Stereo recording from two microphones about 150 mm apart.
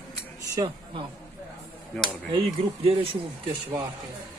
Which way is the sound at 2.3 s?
40° right (ahead or behind).